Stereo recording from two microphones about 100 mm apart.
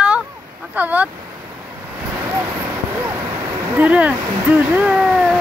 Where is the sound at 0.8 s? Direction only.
15° right (ahead or behind).